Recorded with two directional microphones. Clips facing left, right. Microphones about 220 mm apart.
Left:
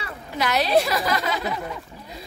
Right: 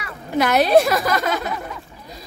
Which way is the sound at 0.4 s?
50° right (ahead or behind).